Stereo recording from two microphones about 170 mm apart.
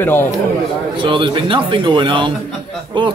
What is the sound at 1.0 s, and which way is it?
Speech, 30° right (ahead or behind).